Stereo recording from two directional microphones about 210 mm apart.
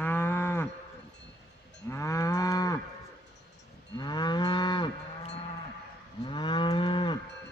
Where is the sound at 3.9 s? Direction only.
20° left (ahead or behind).